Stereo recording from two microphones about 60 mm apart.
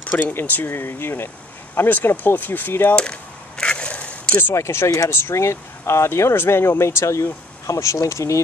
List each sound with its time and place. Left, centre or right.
0.3 s speech: left
3.0 s a sound: centre
4.6 s speech: left